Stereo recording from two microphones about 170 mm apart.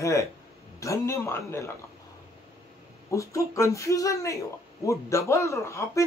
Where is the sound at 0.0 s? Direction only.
20° left (ahead or behind).